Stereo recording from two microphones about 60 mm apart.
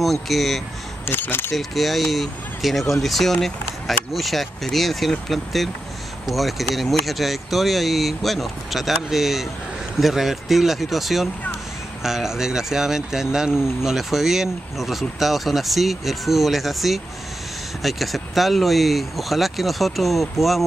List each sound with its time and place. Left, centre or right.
0.0 s speech: centre
1.0 s speech: left
1.5 s speech: centre